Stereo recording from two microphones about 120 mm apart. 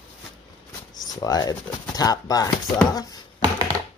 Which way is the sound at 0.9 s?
30° left (ahead or behind).